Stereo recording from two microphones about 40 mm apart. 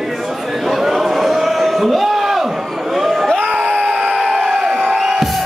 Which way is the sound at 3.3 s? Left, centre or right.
Right.